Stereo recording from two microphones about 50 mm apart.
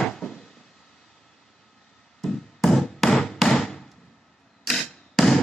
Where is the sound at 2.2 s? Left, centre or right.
Centre.